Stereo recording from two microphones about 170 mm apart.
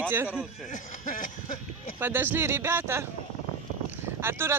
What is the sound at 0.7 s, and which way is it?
Speech, 50° left (ahead or behind).